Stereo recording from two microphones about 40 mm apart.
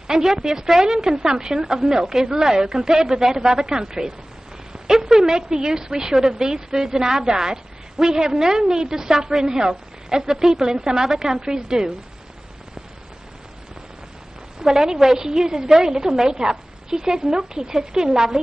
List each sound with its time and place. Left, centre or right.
0.1 s a woman's voice: centre
4.9 s a sound: centre
5.2 s a woman's voice: centre
9.3 s a woman's voice: centre
14.6 s a woman's voice: centre